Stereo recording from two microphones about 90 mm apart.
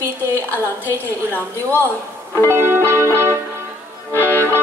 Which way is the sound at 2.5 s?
30° right (ahead or behind).